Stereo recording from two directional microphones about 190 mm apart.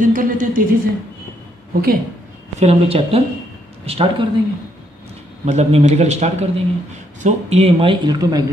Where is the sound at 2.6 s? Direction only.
30° right (ahead or behind).